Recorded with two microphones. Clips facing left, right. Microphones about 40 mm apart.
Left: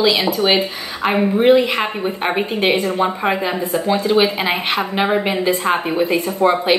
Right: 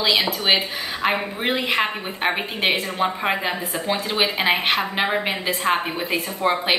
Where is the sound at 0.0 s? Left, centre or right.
Centre.